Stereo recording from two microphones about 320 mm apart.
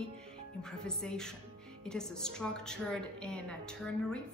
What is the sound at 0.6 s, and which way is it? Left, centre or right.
A woman's voice, centre.